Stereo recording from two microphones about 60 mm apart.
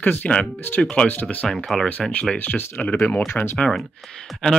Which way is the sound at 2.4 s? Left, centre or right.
Left.